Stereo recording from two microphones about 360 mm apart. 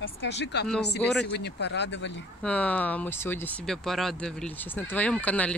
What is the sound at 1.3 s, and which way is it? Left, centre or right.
Speech, left.